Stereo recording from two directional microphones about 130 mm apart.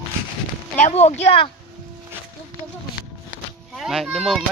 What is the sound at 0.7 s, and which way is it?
Speech, 65° left (ahead or behind).